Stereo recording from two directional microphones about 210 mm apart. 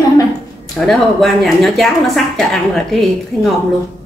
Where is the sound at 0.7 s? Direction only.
Centre (ahead or behind).